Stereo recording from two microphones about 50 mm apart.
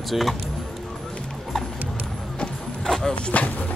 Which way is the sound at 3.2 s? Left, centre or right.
Left.